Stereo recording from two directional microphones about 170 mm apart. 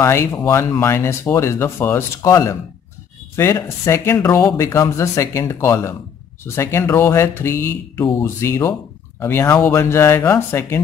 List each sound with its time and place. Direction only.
0.0 s speech: 15° left (ahead or behind)